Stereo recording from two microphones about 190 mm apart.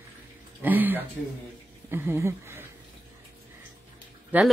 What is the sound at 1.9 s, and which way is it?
Speech, 10° right (ahead or behind).